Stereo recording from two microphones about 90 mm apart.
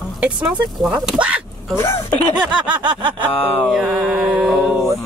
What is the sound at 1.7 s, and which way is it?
Speech, 30° left (ahead or behind).